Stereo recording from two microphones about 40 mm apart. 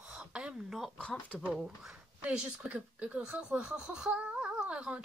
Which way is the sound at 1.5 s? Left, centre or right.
Centre.